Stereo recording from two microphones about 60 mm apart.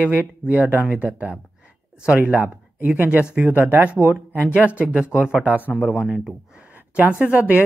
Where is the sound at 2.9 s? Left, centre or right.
Right.